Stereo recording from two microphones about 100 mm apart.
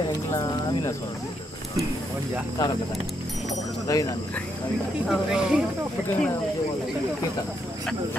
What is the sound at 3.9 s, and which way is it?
Speech, 35° left (ahead or behind).